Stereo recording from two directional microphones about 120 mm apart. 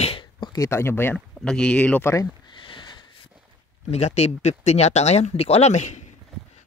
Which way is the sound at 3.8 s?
65° left (ahead or behind).